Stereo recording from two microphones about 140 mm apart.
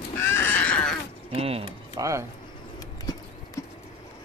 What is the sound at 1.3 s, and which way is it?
Speech, 45° right (ahead or behind).